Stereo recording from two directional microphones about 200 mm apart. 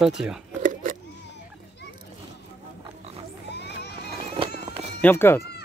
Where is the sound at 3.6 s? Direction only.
60° left (ahead or behind).